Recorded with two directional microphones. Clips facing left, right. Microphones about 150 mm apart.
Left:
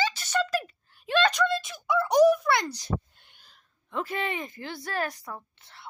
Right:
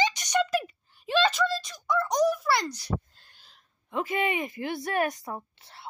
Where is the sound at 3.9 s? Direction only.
10° right (ahead or behind).